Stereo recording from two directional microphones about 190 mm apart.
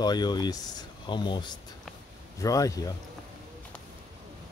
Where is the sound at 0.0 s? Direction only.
20° left (ahead or behind).